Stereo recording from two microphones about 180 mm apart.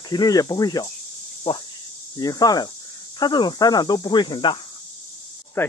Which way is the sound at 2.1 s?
20° left (ahead or behind).